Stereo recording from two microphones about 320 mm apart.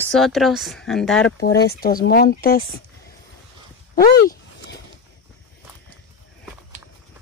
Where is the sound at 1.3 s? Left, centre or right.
Left.